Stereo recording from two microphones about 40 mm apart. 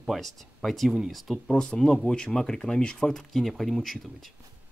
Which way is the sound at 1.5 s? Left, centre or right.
Left.